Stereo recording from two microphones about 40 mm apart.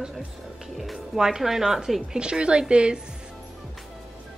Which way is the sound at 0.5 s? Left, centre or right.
Centre.